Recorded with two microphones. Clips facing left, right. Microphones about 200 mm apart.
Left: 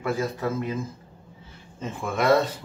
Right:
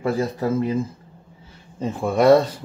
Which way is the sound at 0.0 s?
35° right (ahead or behind).